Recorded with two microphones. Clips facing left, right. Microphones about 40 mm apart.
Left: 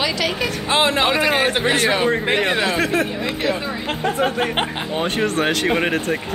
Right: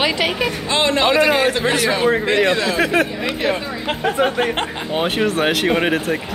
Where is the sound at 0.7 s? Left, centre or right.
Centre.